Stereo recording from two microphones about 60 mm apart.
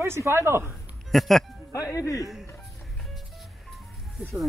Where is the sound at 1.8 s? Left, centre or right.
Left.